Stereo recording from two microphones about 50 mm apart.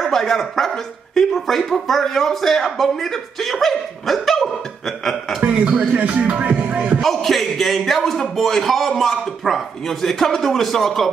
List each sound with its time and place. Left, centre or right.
0.0 s speech: centre
5.4 s a man's voice: right
6.4 s music: right
7.0 s speech: centre